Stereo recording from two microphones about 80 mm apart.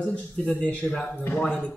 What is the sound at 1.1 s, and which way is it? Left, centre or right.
Speech, left.